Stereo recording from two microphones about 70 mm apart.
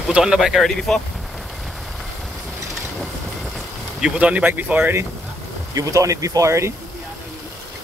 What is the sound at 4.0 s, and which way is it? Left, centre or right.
Speech, centre.